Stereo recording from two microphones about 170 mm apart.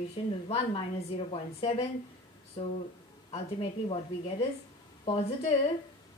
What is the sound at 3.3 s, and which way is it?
Speech, 35° left (ahead or behind).